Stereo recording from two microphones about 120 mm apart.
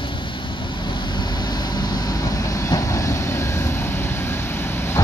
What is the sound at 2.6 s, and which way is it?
Vehicle, 25° left (ahead or behind).